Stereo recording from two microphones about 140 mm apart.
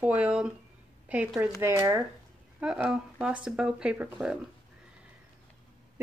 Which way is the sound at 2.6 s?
5° right (ahead or behind).